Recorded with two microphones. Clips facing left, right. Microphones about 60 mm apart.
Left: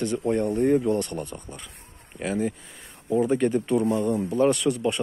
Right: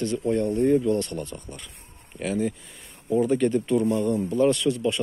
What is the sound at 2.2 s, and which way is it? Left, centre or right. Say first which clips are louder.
Speech: even; left.